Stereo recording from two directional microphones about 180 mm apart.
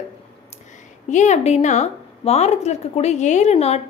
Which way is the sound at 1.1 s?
40° left (ahead or behind).